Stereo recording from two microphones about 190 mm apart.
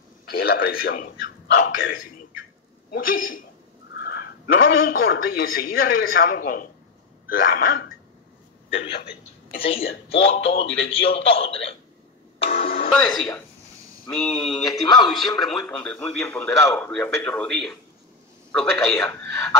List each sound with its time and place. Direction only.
0.3 s a man's voice: 60° left (ahead or behind)
2.9 s a man's voice: 50° left (ahead or behind)
8.6 s a man's voice: 30° left (ahead or behind)
12.4 s music: 30° left (ahead or behind)
12.9 s a man's voice: centre (ahead or behind)
14.6 s a man's voice: 20° left (ahead or behind)
15.4 s a man's voice: 5° left (ahead or behind)